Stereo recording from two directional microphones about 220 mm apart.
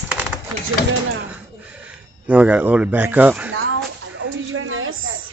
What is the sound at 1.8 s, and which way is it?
Speech, 5° right (ahead or behind).